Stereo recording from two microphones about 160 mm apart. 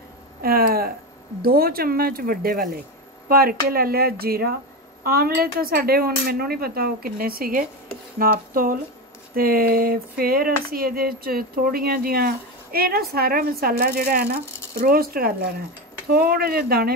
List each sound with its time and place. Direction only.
0.4 s speech: 70° right (ahead or behind)
14.8 s speech: 70° right (ahead or behind)